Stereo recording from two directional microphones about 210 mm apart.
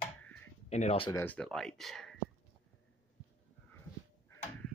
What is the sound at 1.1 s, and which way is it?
Speech, 10° left (ahead or behind).